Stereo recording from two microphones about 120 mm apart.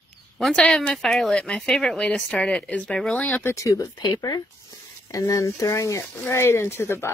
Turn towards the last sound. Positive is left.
turn(degrees=20)  # may be behind; listen again after turning